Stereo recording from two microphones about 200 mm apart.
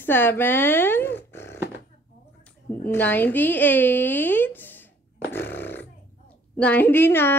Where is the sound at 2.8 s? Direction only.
10° left (ahead or behind).